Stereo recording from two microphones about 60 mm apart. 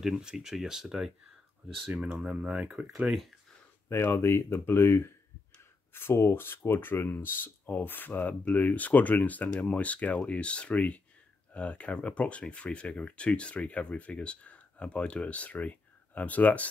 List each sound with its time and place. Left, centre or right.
0.0 s speech: centre
2.2 s speech: centre
3.1 s speech: centre
3.9 s speech: left